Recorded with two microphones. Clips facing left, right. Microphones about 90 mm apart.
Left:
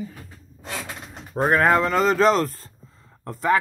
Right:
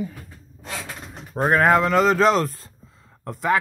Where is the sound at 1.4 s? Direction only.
Centre (ahead or behind).